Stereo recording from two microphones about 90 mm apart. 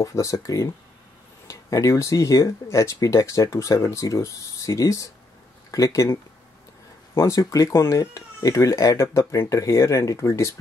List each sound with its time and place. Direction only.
0.0 s speech: 35° left (ahead or behind)
7.2 s speech: 35° left (ahead or behind)